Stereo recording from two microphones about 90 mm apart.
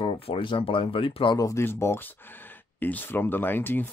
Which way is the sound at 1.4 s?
30° left (ahead or behind).